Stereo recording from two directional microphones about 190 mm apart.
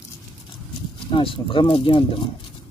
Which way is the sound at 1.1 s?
25° left (ahead or behind).